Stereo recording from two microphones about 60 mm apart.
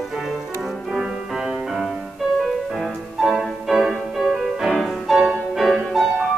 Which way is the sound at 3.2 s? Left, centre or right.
Centre.